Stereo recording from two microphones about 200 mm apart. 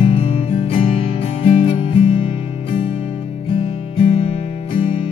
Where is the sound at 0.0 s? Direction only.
25° left (ahead or behind).